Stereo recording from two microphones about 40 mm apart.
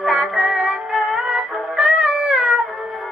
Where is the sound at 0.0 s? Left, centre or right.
Centre.